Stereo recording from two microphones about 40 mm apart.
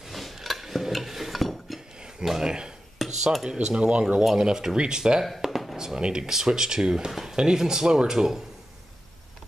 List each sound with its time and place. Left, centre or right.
0.1 s a sound: centre
2.2 s speech: centre
3.0 s dishes: centre
3.4 s speech: right
4.2 s speech: centre
4.5 s speech: centre
5.4 s a sound: centre
5.8 s speech: centre
7.1 s speech: centre
7.3 s speech: centre